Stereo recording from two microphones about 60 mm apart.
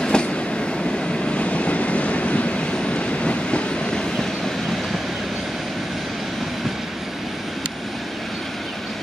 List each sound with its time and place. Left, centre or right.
0.0 s train: centre
1.2 s vehicle: centre